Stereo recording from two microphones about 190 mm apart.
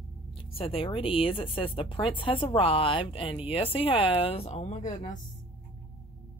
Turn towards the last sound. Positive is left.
turn(degrees=35)  # may be behind; listen again after turning